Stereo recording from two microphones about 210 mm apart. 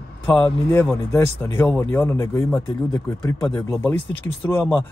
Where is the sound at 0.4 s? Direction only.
10° left (ahead or behind).